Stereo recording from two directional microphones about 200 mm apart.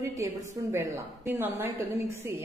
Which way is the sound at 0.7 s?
10° right (ahead or behind).